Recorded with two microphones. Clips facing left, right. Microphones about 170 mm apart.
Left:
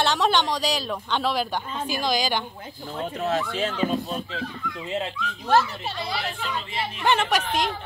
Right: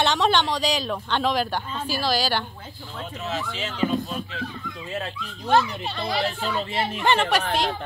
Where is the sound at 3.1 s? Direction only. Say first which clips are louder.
Left 5 dB; 55° left (ahead or behind).